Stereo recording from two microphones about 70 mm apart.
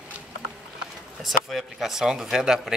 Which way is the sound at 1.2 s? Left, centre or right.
Centre.